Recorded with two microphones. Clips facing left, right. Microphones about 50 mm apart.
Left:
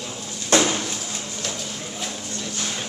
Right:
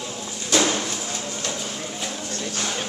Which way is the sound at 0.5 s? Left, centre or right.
Left.